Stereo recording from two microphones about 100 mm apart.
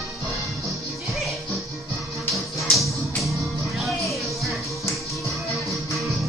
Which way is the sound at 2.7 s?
Centre (ahead or behind).